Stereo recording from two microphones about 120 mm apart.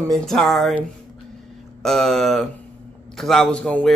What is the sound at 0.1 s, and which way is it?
Speech, centre (ahead or behind).